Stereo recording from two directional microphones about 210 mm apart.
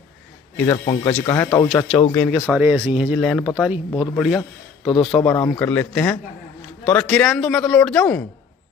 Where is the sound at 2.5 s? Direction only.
5° right (ahead or behind).